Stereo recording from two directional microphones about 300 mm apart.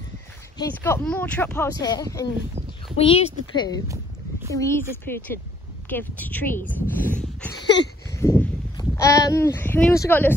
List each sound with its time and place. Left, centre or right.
0.6 s speech: centre
8.2 s speech: centre